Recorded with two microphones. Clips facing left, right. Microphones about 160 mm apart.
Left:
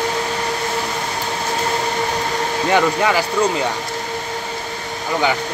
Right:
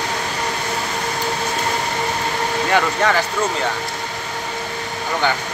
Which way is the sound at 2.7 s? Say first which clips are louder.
Left 2 dB; 10° left (ahead or behind).